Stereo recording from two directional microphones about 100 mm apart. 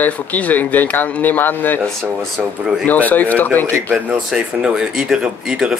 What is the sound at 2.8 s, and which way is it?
Speech, 15° left (ahead or behind).